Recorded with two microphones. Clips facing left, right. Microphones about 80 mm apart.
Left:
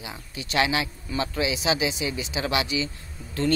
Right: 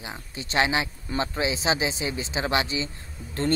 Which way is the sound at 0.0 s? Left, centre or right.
Right.